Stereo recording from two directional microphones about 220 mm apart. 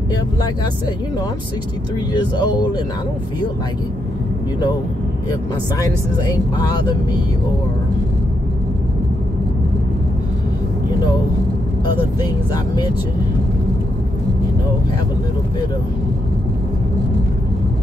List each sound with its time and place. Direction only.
2.1 s speech: 20° left (ahead or behind)